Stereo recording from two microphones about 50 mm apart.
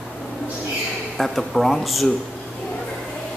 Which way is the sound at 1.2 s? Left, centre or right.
Centre.